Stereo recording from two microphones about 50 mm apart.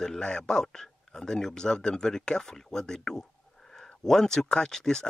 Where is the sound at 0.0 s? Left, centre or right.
Centre.